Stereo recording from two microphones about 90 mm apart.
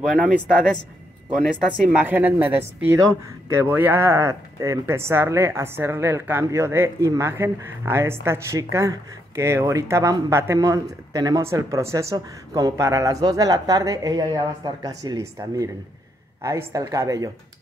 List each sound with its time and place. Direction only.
0.0 s speech: 10° right (ahead or behind)
2.0 s speech: 20° right (ahead or behind); by 11.4 s 45° right (ahead or behind)
11.4 s speech: 35° right (ahead or behind)